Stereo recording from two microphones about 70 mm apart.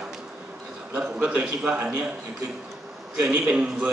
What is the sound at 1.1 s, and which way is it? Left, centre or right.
Speech, right.